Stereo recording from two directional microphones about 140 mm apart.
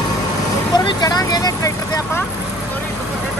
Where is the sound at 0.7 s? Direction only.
30° left (ahead or behind).